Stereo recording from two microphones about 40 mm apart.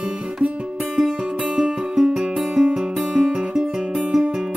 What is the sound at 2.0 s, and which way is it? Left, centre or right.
Music, centre.